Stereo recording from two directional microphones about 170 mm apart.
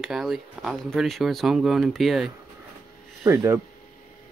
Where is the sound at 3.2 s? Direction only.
15° right (ahead or behind).